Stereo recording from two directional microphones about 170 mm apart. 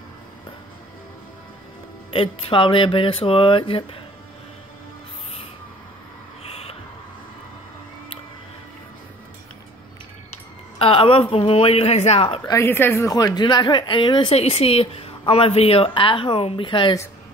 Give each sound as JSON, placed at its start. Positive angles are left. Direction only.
{"t": 2.0, "sound": "speech", "side_deg": 30}
{"t": 6.5, "sound": "a sound", "side_deg": 35}
{"t": 10.8, "sound": "speech", "side_deg": 35}
{"t": 12.4, "sound": "speech", "side_deg": 15}